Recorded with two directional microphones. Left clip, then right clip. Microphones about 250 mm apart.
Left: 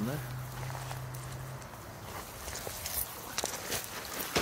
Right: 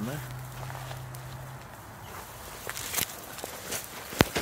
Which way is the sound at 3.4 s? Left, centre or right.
Left.